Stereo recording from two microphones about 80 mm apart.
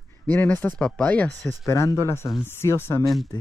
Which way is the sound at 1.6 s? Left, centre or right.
Left.